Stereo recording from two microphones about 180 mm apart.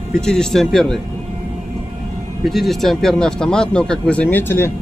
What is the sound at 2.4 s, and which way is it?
Speech, centre (ahead or behind).